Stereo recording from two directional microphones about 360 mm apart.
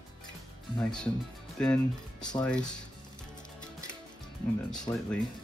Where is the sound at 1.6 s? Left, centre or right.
Centre.